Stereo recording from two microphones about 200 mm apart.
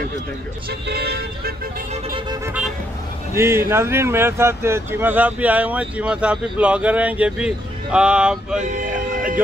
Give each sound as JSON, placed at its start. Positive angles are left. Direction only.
{"t": 0.7, "sound": "speech", "side_deg": -50}
{"t": 2.1, "sound": "music", "side_deg": -20}
{"t": 3.3, "sound": "speech", "side_deg": -15}
{"t": 8.5, "sound": "speech", "side_deg": -40}